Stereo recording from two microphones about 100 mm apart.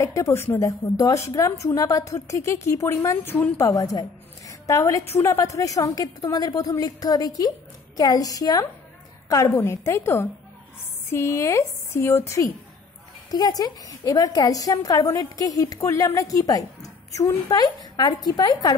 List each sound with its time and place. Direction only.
0.0 s a woman's voice: 30° left (ahead or behind)
13.3 s a woman's voice: 40° left (ahead or behind)